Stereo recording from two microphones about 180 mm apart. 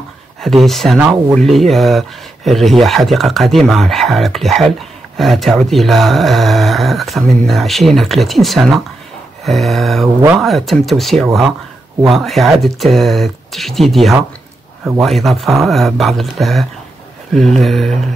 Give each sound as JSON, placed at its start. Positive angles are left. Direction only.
{"t": 0.4, "sound": "speech", "side_deg": 0}